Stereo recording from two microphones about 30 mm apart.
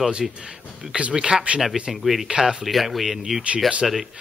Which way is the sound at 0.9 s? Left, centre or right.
Right.